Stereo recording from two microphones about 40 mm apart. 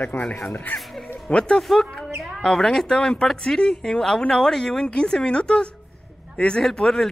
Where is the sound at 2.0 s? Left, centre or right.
Centre.